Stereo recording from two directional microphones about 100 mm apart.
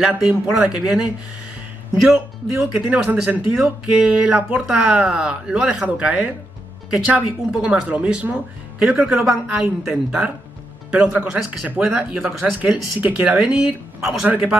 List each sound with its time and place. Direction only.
0.0 s a man's voice: 10° right (ahead or behind)
2.5 s speech: 15° right (ahead or behind)
14.2 s speech: 15° right (ahead or behind)